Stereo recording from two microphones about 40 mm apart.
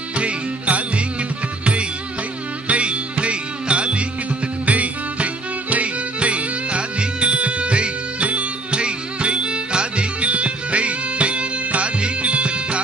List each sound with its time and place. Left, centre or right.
0.1 s music: right
2.7 s music: right
4.6 s music: right